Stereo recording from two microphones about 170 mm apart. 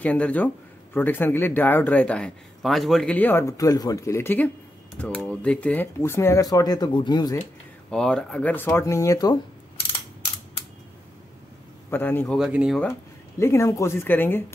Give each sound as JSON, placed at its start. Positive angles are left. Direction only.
{"t": 0.0, "sound": "a man's voice", "side_deg": 10}
{"t": 7.9, "sound": "a man's voice", "side_deg": 5}
{"t": 11.9, "sound": "a man's voice", "side_deg": 10}
{"t": 12.4, "sound": "speech", "side_deg": -5}
{"t": 13.4, "sound": "a man's voice", "side_deg": 15}